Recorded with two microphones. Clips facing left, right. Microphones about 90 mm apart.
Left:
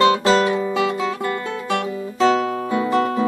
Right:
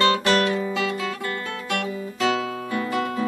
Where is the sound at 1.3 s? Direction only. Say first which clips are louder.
Left 5 dB; 25° left (ahead or behind).